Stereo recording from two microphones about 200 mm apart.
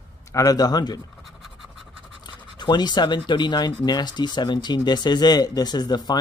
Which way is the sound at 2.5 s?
20° left (ahead or behind).